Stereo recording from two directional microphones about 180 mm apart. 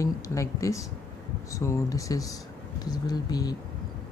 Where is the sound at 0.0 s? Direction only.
20° left (ahead or behind).